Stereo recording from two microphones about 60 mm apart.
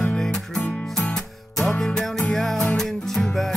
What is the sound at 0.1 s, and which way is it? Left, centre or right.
Music, centre.